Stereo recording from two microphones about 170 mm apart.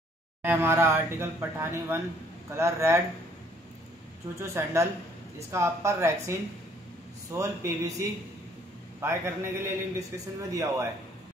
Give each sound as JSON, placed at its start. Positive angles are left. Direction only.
{"t": 0.4, "sound": "speech", "side_deg": -15}
{"t": 4.4, "sound": "speech", "side_deg": -15}